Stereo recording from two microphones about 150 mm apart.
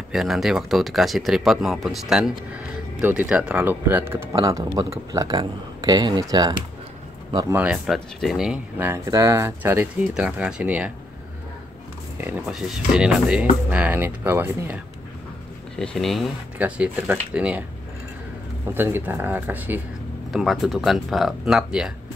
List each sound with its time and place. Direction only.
0.1 s speech: centre (ahead or behind); by 6.5 s 25° right (ahead or behind)
7.5 s speech: 5° right (ahead or behind)
8.7 s speech: 15° right (ahead or behind)
12.2 s speech: 15° right (ahead or behind)
15.7 s speech: 5° left (ahead or behind)
18.7 s speech: 15° right (ahead or behind)
20.3 s speech: centre (ahead or behind)